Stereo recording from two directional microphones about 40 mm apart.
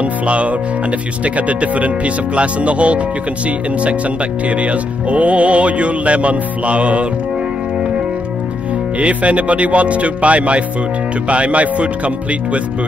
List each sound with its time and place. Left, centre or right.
0.0 s music: right
1.2 s speech: right
4.5 s speech: right
9.0 s speech: right